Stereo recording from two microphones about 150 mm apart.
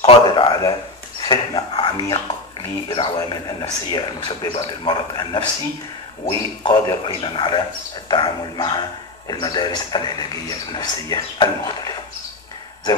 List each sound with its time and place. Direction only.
0.0 s a man's voice: 35° left (ahead or behind)